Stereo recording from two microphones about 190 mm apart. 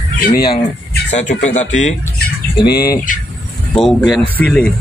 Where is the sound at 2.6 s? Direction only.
55° left (ahead or behind).